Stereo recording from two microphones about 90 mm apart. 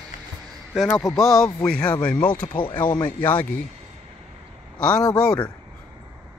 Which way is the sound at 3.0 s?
20° left (ahead or behind).